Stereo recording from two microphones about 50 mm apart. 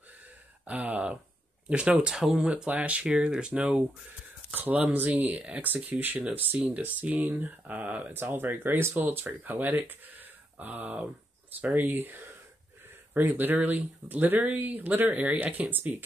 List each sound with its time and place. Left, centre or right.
0.7 s speech: right
2.1 s speech: centre
2.5 s speech: right
4.6 s speech: right
8.1 s speech: right
8.9 s speech: right